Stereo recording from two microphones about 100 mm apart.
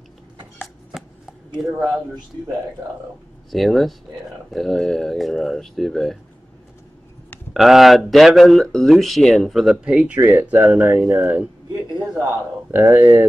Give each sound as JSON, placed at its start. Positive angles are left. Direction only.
{"t": 0.9, "sound": "chopping", "side_deg": -5}
{"t": 1.6, "sound": "speech", "side_deg": -5}
{"t": 3.4, "sound": "speech", "side_deg": 0}
{"t": 7.5, "sound": "speech", "side_deg": -5}
{"t": 12.7, "sound": "speech", "side_deg": -20}